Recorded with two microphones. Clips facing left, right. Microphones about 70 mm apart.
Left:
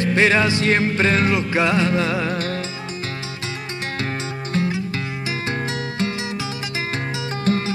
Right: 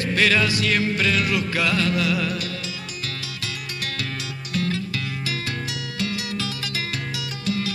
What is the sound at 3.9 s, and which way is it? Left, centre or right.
Music, left.